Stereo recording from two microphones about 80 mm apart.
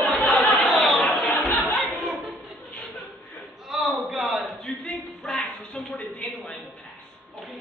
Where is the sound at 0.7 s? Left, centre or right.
Centre.